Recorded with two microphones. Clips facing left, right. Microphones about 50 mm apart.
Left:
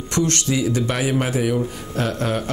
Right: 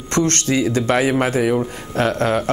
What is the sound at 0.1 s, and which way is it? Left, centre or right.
Speech, right.